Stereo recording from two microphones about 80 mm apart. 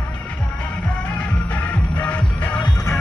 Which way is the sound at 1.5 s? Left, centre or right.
Centre.